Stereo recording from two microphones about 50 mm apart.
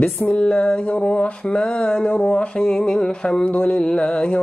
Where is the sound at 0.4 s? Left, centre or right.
Centre.